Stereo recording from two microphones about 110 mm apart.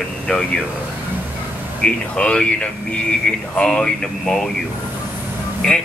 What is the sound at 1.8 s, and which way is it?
Speech, 10° left (ahead or behind).